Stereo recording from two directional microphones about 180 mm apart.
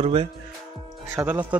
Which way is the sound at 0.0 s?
35° right (ahead or behind).